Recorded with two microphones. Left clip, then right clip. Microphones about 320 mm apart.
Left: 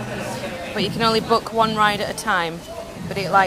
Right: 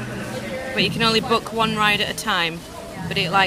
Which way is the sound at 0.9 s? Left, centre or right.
Centre.